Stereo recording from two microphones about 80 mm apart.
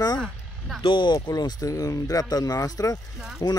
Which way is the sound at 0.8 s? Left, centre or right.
Left.